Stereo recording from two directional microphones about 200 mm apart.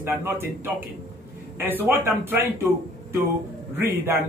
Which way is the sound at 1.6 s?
10° right (ahead or behind).